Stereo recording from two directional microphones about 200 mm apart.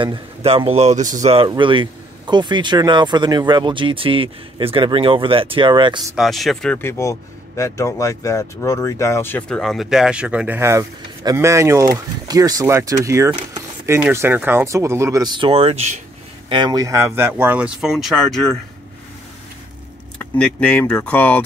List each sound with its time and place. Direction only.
0.0 s speech: 25° right (ahead or behind)
6.1 s speech: centre (ahead or behind); by 16.0 s 30° right (ahead or behind)
16.4 s speech: 20° right (ahead or behind); by 18.6 s centre (ahead or behind)
20.2 s speech: 5° left (ahead or behind)